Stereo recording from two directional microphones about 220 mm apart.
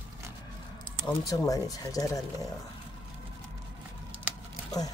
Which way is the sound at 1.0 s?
15° left (ahead or behind).